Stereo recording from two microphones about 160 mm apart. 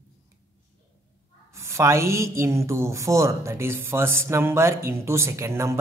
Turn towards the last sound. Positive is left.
turn(degrees=-20)  # may be behind; listen again after turning